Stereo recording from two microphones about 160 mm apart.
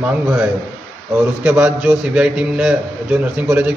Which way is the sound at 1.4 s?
5° right (ahead or behind).